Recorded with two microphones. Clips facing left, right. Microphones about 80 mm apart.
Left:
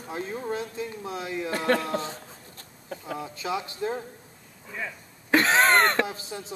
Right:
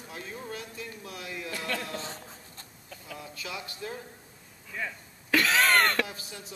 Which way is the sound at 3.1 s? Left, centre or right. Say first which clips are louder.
Left 8 dB; left.